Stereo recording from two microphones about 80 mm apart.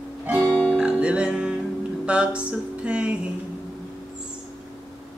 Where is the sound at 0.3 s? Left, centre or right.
Right.